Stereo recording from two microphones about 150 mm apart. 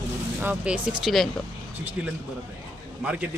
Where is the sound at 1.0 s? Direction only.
Centre (ahead or behind).